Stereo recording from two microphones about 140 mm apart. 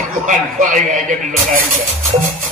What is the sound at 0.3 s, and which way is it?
A man's voice, 70° right (ahead or behind).